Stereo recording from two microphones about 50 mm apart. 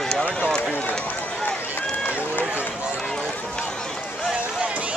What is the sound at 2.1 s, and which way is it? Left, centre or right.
Run, right.